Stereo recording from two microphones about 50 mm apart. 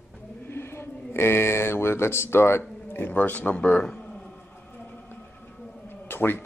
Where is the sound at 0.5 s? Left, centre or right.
Left.